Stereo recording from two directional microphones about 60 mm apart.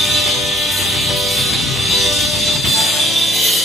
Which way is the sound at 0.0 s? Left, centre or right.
Centre.